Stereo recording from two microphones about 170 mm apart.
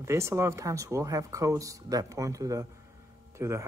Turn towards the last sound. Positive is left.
turn(degrees=-15)  # may be behind; listen again after turning